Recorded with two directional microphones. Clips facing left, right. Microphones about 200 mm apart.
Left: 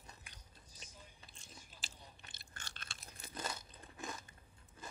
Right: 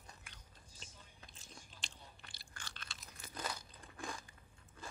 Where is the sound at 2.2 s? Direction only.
20° left (ahead or behind).